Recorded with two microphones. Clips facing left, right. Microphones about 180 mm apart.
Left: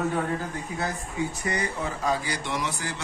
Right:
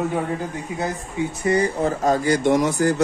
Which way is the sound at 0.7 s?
20° right (ahead or behind).